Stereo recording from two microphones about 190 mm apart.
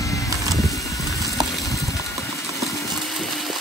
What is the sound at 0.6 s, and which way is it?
Vehicle, 15° left (ahead or behind).